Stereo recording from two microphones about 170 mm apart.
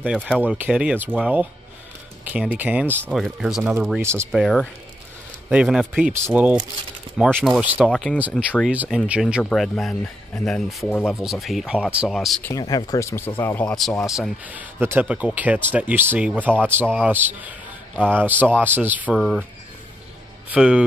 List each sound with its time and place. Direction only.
0.0 s speech: 5° right (ahead or behind)
4.0 s speech: 15° right (ahead or behind)
4.3 s speech: centre (ahead or behind)
7.4 s speech: centre (ahead or behind)
12.4 s speech: 20° left (ahead or behind); by 19.4 s centre (ahead or behind)
20.5 s speech: 5° right (ahead or behind)